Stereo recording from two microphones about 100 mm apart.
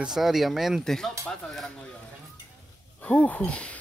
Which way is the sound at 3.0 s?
15° left (ahead or behind).